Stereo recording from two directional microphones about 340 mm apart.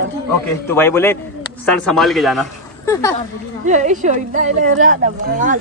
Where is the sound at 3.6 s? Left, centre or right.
Right.